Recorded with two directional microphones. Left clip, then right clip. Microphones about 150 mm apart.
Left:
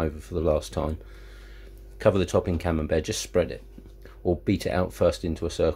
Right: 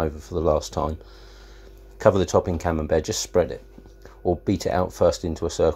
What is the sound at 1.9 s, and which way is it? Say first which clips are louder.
Speech: right 4 dB; centre (ahead or behind).